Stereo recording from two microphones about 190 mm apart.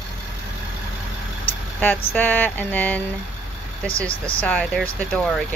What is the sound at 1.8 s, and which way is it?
Speech, 10° left (ahead or behind).